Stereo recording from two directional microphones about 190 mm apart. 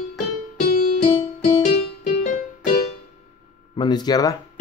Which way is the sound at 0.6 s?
50° left (ahead or behind).